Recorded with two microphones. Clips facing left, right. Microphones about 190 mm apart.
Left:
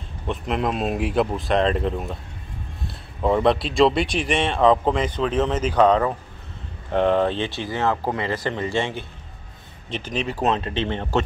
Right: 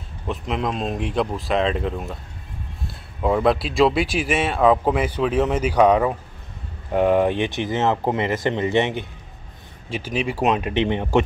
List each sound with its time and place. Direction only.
0.3 s speech: centre (ahead or behind)
3.2 s speech: 5° right (ahead or behind); by 9.0 s 20° right (ahead or behind)
9.8 s speech: 10° right (ahead or behind)